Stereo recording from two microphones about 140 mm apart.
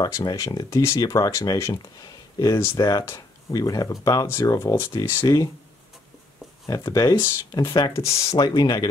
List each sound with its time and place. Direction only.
0.0 s speech: 30° left (ahead or behind)
6.7 s speech: 25° left (ahead or behind)
8.1 s speech: 45° left (ahead or behind)
8.4 s speech: 30° left (ahead or behind)